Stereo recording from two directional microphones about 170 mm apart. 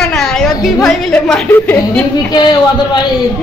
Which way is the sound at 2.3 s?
25° left (ahead or behind).